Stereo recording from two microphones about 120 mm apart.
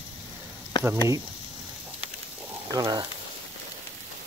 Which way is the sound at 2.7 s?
30° right (ahead or behind).